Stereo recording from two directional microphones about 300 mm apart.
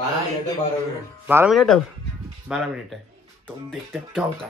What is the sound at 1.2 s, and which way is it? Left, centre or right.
Speech, centre.